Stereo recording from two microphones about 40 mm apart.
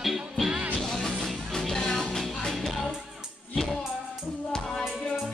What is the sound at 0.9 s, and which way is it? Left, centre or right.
Music, centre.